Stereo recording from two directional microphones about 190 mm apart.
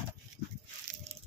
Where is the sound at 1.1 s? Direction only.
35° right (ahead or behind).